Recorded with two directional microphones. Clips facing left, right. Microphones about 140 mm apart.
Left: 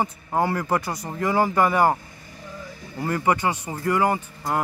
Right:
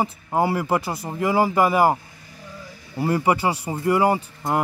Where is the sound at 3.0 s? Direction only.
20° right (ahead or behind).